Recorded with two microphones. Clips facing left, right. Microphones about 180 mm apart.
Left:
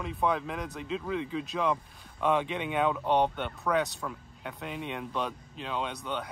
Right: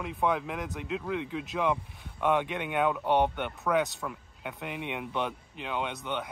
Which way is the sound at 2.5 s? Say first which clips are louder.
Even; 5° right (ahead or behind).